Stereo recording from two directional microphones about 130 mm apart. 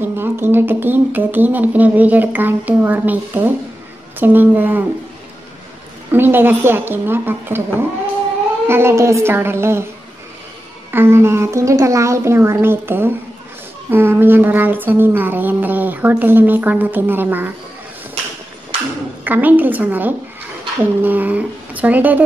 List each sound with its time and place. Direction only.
0.0 s speech: 15° right (ahead or behind)
6.1 s a woman's voice: 15° right (ahead or behind)
10.9 s a woman's voice: 20° right (ahead or behind)
19.2 s speech: 15° right (ahead or behind)